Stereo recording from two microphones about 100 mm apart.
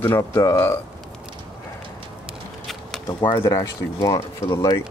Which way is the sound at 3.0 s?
50° left (ahead or behind).